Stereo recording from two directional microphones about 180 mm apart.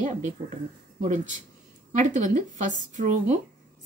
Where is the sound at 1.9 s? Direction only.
45° right (ahead or behind).